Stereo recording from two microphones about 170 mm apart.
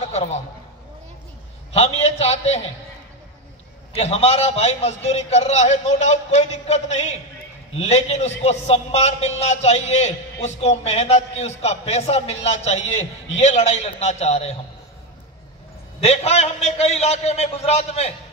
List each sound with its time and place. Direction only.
0.0 s a sound: 40° left (ahead or behind)
1.7 s a man's voice: 40° left (ahead or behind)
3.9 s a man's voice: 35° left (ahead or behind)
16.0 s a man's voice: 40° left (ahead or behind)